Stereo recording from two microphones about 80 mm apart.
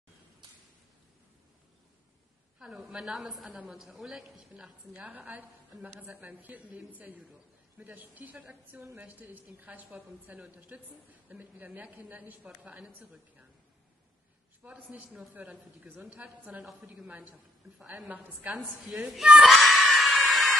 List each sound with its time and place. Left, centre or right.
2.6 s a woman's voice: centre
4.9 s a woman's voice: centre
14.6 s a woman's voice: centre
18.9 s screaming: centre